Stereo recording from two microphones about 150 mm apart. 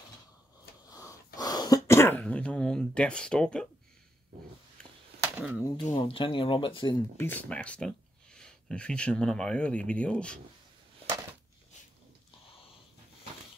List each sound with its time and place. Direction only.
0.8 s a sound: 20° left (ahead or behind)
1.9 s speech: 15° left (ahead or behind)
5.6 s speech: 30° left (ahead or behind)
7.2 s speech: 10° left (ahead or behind)